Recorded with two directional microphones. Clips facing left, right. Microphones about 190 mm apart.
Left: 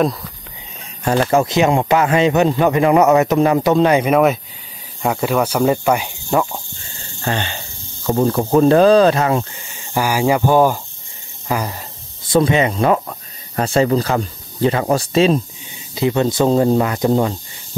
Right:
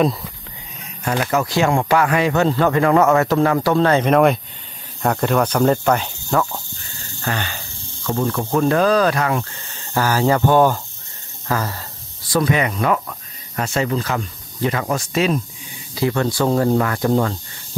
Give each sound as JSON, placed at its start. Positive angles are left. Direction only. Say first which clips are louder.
{"t": 1.0, "sound": "speech", "louder": "left 5 dB", "side_deg": 30}
{"t": 7.2, "sound": "speech", "louder": "left 3 dB", "side_deg": 30}
{"t": 12.3, "sound": "speech", "louder": "left 4 dB", "side_deg": 25}